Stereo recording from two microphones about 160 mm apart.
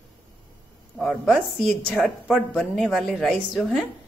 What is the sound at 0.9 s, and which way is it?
A woman's voice, centre (ahead or behind).